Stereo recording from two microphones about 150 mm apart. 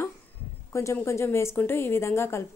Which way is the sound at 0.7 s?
20° left (ahead or behind).